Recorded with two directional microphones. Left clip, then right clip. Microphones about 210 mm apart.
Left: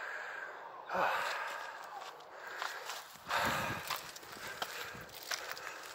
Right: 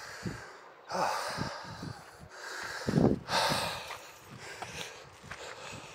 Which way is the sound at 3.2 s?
60° right (ahead or behind).